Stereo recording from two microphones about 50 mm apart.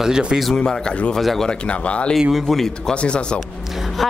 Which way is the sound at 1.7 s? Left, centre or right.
Left.